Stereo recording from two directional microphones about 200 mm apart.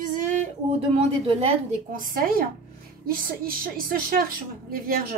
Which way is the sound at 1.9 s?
45° right (ahead or behind).